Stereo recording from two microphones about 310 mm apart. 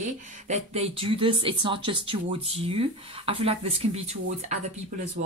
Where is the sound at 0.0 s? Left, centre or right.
Right.